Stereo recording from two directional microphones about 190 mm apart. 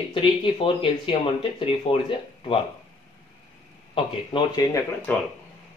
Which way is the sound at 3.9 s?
20° left (ahead or behind).